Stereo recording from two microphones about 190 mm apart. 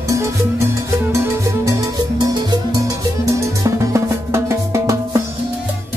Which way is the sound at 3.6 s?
15° right (ahead or behind).